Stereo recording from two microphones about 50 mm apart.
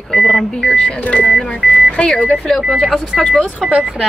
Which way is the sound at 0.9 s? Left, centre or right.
Left.